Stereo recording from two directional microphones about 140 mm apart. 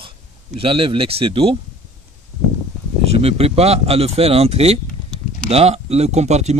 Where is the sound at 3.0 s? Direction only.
45° right (ahead or behind).